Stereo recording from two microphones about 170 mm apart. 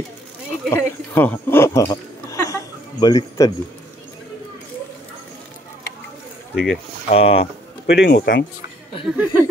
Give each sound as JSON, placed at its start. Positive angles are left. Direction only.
{"t": 0.7, "sound": "speech", "side_deg": 10}
{"t": 6.5, "sound": "speech", "side_deg": 0}
{"t": 7.1, "sound": "speech", "side_deg": 35}
{"t": 7.8, "sound": "speech", "side_deg": 80}
{"t": 9.1, "sound": "speech", "side_deg": -10}